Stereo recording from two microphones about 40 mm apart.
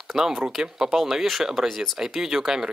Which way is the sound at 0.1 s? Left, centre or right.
Centre.